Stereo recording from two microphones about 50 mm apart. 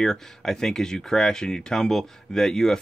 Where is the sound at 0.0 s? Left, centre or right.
Centre.